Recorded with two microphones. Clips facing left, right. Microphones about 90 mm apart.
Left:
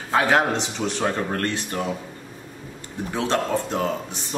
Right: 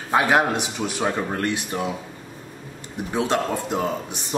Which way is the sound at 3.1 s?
15° right (ahead or behind).